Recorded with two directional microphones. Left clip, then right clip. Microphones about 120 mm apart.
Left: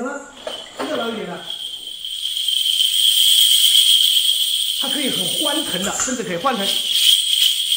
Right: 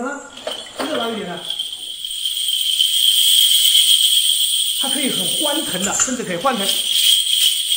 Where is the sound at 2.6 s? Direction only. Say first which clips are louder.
Even; 15° left (ahead or behind).